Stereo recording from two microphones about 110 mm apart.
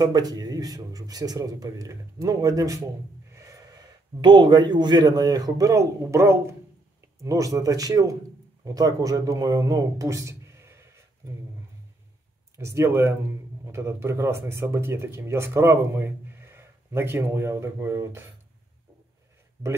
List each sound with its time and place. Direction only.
0.0 s speech: 35° right (ahead or behind)
3.3 s gasp: 30° right (ahead or behind)
4.2 s speech: 45° right (ahead or behind); by 10.9 s 25° right (ahead or behind)
12.5 s speech: 25° right (ahead or behind)